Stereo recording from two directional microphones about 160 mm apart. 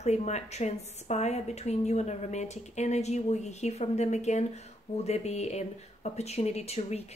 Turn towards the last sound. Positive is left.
turn(degrees=45)  # may be behind; listen again after turning